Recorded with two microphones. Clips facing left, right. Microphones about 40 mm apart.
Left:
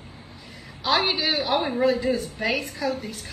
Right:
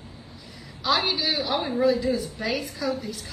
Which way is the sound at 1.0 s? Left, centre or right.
Left.